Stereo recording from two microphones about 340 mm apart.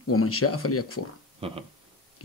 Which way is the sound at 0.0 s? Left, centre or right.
Left.